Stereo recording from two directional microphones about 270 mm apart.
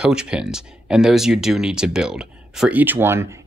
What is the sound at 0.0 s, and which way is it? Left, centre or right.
Speech, centre.